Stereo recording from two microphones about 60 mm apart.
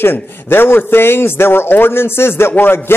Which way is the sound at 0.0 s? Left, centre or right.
Left.